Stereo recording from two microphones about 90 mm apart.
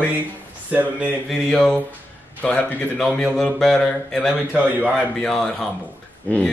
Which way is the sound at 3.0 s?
5° left (ahead or behind).